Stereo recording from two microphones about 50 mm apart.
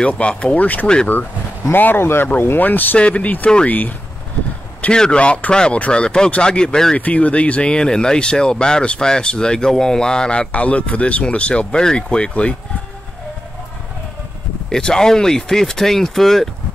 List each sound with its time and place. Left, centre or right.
0.2 s speech: left
1.7 s speech: left
3.0 s speech: left
4.9 s speech: centre
7.0 s speech: left
10.5 s speech: left
14.7 s speech: centre